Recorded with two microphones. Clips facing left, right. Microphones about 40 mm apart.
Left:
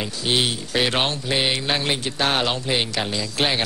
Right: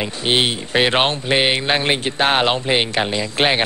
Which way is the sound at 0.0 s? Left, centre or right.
Right.